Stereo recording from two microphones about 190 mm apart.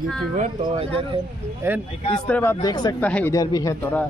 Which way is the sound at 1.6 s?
15° right (ahead or behind).